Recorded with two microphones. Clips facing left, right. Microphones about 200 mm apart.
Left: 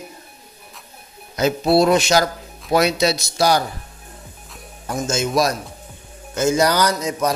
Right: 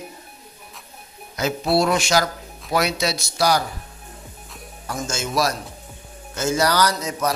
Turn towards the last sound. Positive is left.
turn(degrees=20)  # may be behind; listen again after turning